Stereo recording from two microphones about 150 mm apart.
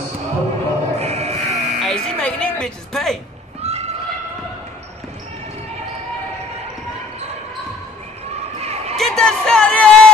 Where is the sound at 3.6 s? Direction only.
45° right (ahead or behind).